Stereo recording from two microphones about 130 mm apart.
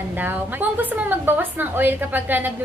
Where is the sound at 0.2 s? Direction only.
15° right (ahead or behind).